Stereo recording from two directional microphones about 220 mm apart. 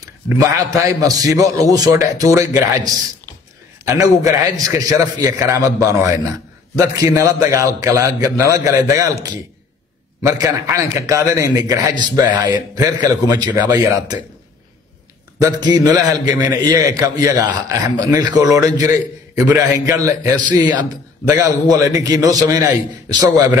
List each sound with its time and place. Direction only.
0.0 s a man's voice: 15° right (ahead or behind)
15.3 s a man's voice: 15° right (ahead or behind)